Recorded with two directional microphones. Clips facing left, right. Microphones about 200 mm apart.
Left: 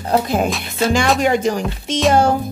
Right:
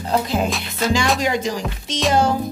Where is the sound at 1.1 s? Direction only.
55° left (ahead or behind).